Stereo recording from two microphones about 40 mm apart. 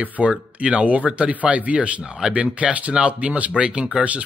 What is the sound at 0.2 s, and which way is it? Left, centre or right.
Speech, right.